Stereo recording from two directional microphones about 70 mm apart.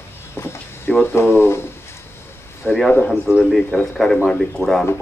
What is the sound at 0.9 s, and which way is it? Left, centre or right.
Speech, left.